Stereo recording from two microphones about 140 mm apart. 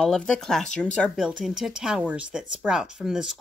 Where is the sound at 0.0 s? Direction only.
5° left (ahead or behind).